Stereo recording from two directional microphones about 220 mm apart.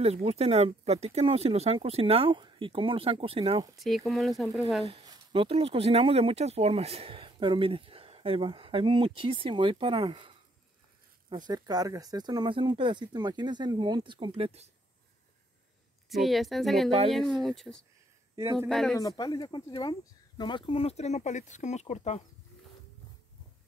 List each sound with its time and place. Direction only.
0.0 s speech: 30° right (ahead or behind)
3.7 s speech: centre (ahead or behind)
4.8 s speech: 20° right (ahead or behind)
16.1 s speech: centre (ahead or behind)
18.3 s a man's voice: 15° right (ahead or behind)
18.7 s speech: centre (ahead or behind)
18.9 s speech: 15° left (ahead or behind)